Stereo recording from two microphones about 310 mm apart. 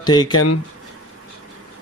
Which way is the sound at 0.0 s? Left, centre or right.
Centre.